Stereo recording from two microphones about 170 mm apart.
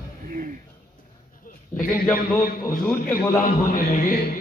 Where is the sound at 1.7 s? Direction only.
15° left (ahead or behind).